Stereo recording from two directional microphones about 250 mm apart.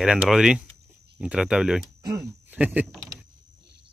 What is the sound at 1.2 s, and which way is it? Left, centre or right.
Speech, centre.